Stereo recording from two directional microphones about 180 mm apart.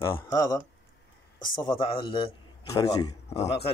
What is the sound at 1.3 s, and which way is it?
Speech, 50° left (ahead or behind).